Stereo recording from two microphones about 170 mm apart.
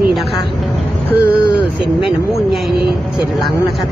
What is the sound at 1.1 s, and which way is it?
Speech, 70° right (ahead or behind).